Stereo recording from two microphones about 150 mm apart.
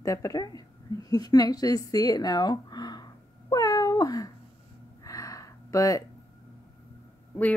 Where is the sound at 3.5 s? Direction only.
25° left (ahead or behind).